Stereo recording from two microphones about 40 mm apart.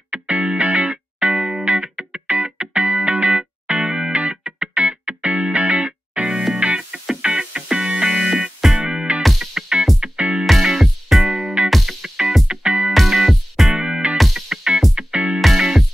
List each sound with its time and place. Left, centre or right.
0.1 s music: right
9.4 s music: centre
10.7 s music: centre
12.4 s music: right
12.9 s music: centre
13.7 s music: right
14.1 s music: centre
14.5 s music: right
15.4 s music: centre